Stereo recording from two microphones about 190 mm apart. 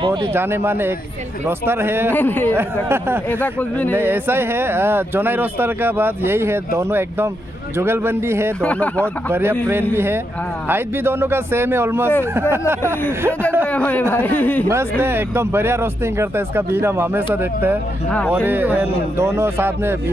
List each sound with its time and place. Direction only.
0.0 s speech: 25° right (ahead or behind)
0.3 s speech: 10° right (ahead or behind)
2.1 s speech: 10° left (ahead or behind)
2.5 s speech: 10° right (ahead or behind)
3.3 s speech: 10° left (ahead or behind)
3.9 s speech: 10° right (ahead or behind)
8.5 s speech: 5° left (ahead or behind)
9.0 s speech: 10° right (ahead or behind)
13.7 s speech: 5° left (ahead or behind)
14.7 s speech: 10° right (ahead or behind)